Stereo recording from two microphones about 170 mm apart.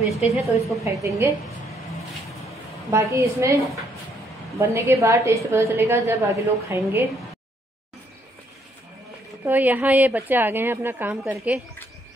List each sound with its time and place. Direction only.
0.2 s a woman's voice: centre (ahead or behind)
1.0 s a woman's voice: 20° right (ahead or behind)
2.9 s a woman's voice: 15° right (ahead or behind)
9.4 s a woman's voice: 10° right (ahead or behind)